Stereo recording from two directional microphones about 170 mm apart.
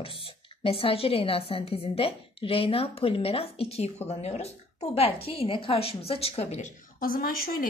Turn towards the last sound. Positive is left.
turn(degrees=60)  # may be behind; listen again after turning